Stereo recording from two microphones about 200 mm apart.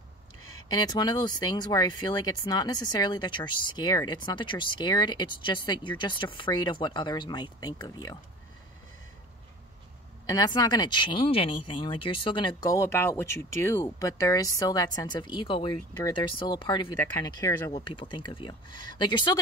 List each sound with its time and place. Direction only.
0.7 s speech: 20° left (ahead or behind)
10.2 s speech: 20° left (ahead or behind)
17.0 s speech: 10° left (ahead or behind)